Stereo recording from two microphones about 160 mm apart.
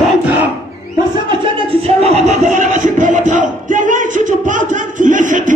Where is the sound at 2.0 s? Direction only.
40° right (ahead or behind).